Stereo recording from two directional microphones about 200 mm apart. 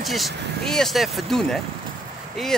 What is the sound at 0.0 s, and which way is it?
Speech, centre (ahead or behind).